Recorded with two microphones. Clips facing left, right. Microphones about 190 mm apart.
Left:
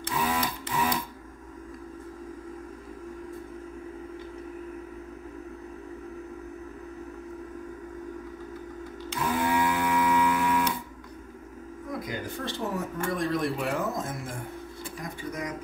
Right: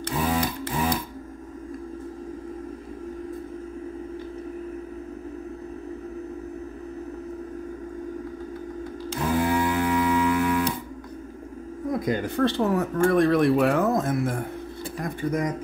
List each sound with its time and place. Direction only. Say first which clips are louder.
0.2 s printer: right 4 dB; 45° right (ahead or behind)
9.1 s music: right 3 dB; 35° right (ahead or behind)
12.1 s speech: right 10 dB; 65° right (ahead or behind)